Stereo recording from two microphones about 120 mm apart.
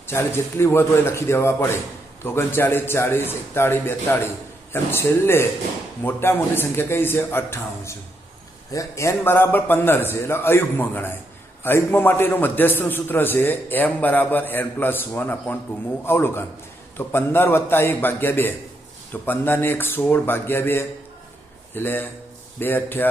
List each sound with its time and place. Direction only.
0.0 s a man's voice: 20° left (ahead or behind)